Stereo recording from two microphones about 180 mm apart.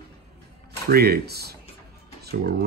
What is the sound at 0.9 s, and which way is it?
Speech, 60° right (ahead or behind).